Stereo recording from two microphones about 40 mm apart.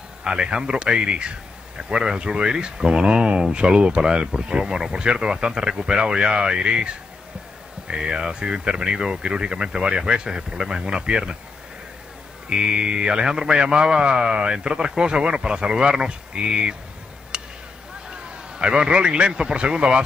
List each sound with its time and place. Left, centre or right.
0.2 s speech: right
12.4 s speech: right
17.3 s a sound: right
18.1 s a man's voice: right